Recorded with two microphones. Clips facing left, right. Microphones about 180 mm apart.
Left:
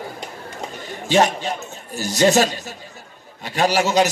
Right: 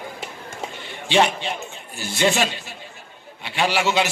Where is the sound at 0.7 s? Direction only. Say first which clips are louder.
Left 2 dB; 40° left (ahead or behind).